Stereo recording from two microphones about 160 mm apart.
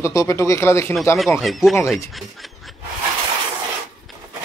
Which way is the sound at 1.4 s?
Centre (ahead or behind).